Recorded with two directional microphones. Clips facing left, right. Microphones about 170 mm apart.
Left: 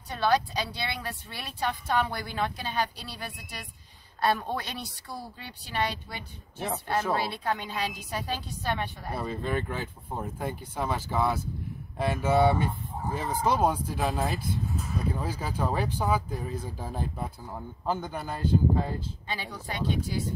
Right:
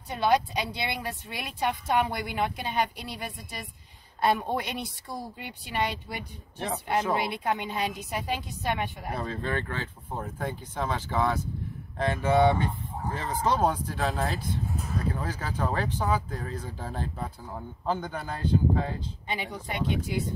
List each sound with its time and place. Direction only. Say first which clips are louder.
0.1 s a woman's voice: right 1 dB; 15° right (ahead or behind)
9.1 s speech: left 2 dB; 10° left (ahead or behind)
19.2 s a woman's voice: right 6 dB; 20° right (ahead or behind)